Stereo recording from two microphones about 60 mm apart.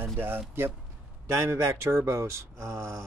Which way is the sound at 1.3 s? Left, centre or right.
Right.